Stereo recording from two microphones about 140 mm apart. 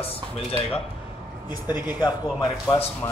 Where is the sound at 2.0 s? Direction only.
25° left (ahead or behind).